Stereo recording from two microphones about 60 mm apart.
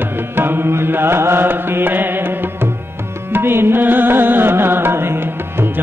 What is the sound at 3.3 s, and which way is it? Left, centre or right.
Music, right.